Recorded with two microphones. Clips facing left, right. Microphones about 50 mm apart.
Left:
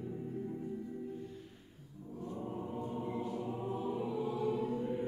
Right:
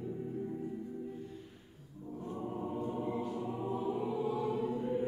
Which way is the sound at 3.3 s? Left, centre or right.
Right.